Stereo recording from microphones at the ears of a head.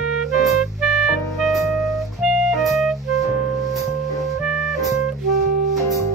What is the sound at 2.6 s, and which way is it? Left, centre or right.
Music, right.